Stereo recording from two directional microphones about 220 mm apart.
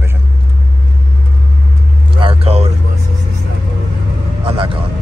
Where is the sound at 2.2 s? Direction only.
25° right (ahead or behind).